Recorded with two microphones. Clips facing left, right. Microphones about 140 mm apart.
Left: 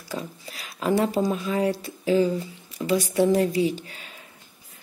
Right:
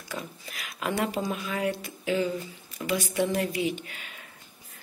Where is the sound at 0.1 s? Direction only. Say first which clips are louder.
Left 4 dB; 35° left (ahead or behind).